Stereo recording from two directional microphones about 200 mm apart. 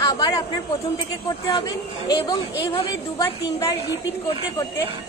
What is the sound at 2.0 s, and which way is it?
A woman's voice, 20° left (ahead or behind).